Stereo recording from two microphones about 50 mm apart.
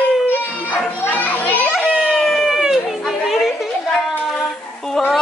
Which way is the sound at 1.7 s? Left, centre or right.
Centre.